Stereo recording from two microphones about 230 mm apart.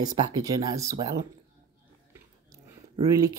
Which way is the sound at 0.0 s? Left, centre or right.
Centre.